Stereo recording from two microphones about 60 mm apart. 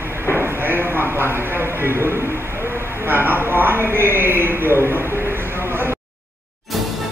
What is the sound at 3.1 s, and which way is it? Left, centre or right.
A man's voice, right.